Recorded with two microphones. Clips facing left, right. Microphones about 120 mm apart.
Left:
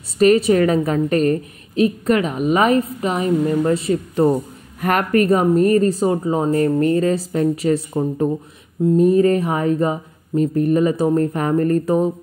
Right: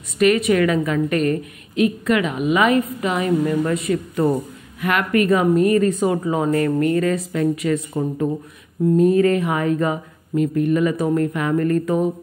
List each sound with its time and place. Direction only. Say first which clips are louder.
0.2 s a woman's voice: left 3 dB; 35° left (ahead or behind)
4.7 s a woman's voice: left 2 dB; 40° left (ahead or behind)